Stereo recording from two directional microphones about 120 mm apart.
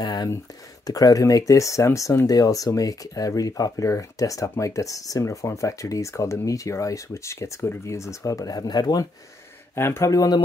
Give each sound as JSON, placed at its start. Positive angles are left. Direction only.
{"t": 0.0, "sound": "speech", "side_deg": 35}
{"t": 9.8, "sound": "speech", "side_deg": 25}